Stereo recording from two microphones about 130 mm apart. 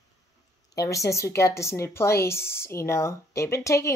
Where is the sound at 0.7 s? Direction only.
25° left (ahead or behind).